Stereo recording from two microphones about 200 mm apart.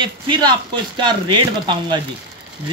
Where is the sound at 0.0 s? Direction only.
20° right (ahead or behind).